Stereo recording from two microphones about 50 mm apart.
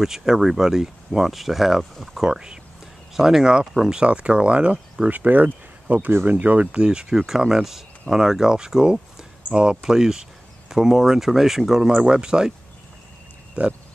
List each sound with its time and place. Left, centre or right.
0.0 s speech: centre
4.0 s speech: right
5.0 s speech: right; by 12.5 s centre
13.6 s speech: right